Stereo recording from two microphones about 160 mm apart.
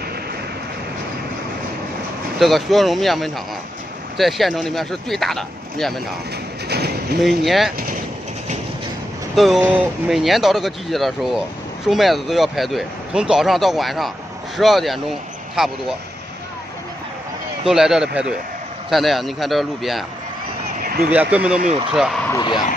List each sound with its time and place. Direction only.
2.3 s speech: centre (ahead or behind)
6.7 s a sound: 85° right
7.2 s speech: centre (ahead or behind)
9.3 s speech: centre (ahead or behind)
17.6 s speech: 5° right (ahead or behind)
20.8 s a sound: 70° right (ahead or behind)
21.1 s speech: 10° right (ahead or behind)